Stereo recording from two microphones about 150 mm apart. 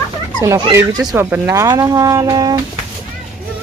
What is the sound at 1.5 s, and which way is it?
Speech, 20° right (ahead or behind).